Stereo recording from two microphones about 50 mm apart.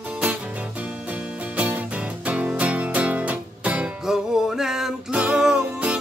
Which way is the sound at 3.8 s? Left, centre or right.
Centre.